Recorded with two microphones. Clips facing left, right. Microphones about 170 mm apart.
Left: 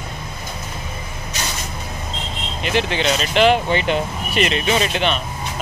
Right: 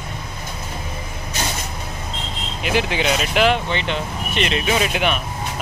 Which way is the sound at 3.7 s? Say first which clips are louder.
Left 4 dB; 45° left (ahead or behind).